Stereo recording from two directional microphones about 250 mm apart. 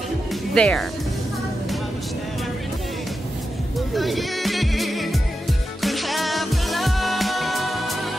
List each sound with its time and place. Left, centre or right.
0.3 s music: centre
3.9 s music: centre